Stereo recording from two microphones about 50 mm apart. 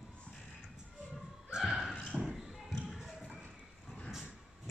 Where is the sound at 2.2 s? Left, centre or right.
Centre.